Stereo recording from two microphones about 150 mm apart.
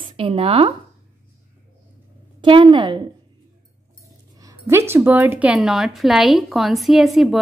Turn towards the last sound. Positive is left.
turn(degrees=0)  # may be behind; listen again after turning